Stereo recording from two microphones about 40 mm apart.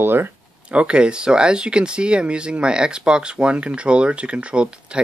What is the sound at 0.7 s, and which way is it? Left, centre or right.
Speech, right.